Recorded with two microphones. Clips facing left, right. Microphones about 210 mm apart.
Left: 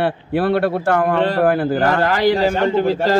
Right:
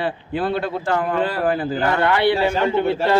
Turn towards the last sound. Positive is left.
turn(degrees=35)  # may be behind; listen again after turning